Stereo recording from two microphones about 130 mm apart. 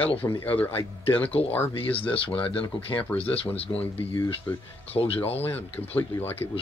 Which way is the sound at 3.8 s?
15° left (ahead or behind).